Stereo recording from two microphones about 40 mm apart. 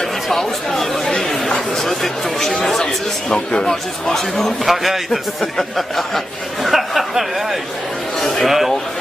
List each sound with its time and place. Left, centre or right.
0.3 s chatter: centre
2.4 s speech: centre
4.6 s a man's voice: centre
8.5 s a man's voice: centre